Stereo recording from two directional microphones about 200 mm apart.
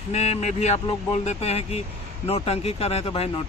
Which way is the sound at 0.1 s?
35° left (ahead or behind).